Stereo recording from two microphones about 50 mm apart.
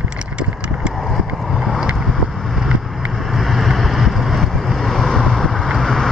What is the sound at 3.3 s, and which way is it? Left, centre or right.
Vehicle, centre.